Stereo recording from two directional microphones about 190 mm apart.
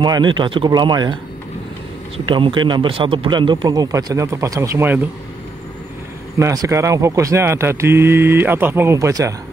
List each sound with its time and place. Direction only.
0.0 s a man's voice: 25° right (ahead or behind)
2.1 s a man's voice: 25° right (ahead or behind); by 5.0 s 10° right (ahead or behind)
6.3 s speech: 15° right (ahead or behind)